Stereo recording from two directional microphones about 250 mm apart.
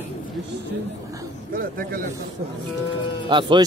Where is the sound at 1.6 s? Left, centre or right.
Right.